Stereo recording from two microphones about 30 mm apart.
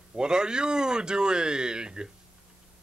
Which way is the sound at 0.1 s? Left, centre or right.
Right.